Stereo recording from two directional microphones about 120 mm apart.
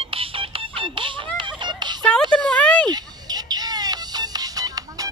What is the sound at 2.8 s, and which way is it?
Music, 35° right (ahead or behind).